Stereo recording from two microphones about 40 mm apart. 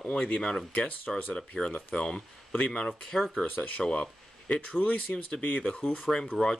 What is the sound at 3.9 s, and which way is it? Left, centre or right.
Speech, left.